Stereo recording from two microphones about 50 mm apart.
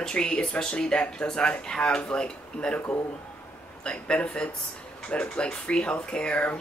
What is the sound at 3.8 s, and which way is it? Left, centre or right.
A woman's voice, left.